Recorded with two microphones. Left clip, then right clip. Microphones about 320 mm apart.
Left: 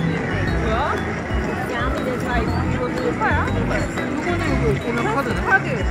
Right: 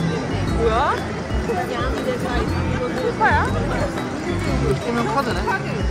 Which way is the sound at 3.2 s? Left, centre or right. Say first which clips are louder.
Right 5 dB; right.